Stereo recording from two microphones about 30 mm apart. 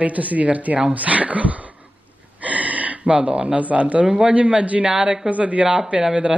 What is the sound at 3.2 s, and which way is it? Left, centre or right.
Speech, right.